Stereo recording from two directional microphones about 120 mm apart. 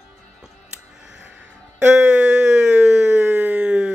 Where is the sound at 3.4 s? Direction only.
10° right (ahead or behind).